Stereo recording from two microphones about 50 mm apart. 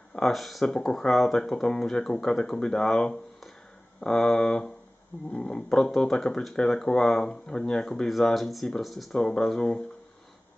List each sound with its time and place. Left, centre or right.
0.2 s speech: centre